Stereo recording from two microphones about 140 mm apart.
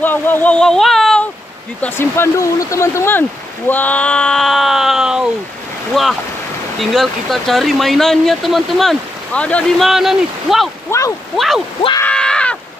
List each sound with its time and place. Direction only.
0.0 s speech: 15° left (ahead or behind)
1.8 s speech: 15° left (ahead or behind)
9.8 s speech: centre (ahead or behind)
10.9 s speech: 20° left (ahead or behind)
11.3 s speech: centre (ahead or behind)
12.0 s groan: 5° left (ahead or behind)